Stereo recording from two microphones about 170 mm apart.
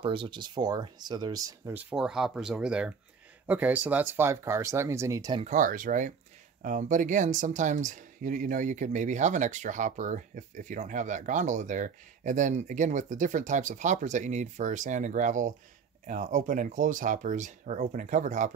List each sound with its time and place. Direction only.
0.0 s speech: 30° right (ahead or behind)
1.7 s speech: 10° right (ahead or behind)
5.4 s speech: 50° right (ahead or behind)